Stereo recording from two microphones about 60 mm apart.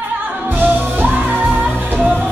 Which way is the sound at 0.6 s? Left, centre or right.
Right.